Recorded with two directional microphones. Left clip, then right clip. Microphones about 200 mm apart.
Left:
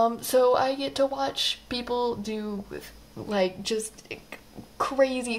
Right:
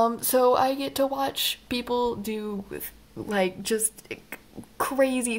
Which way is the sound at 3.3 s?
25° right (ahead or behind).